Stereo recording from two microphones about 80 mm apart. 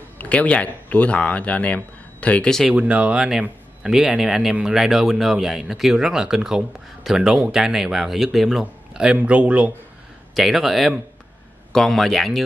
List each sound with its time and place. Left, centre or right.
0.2 s speech: centre
2.7 s speech: centre
10.3 s speech: centre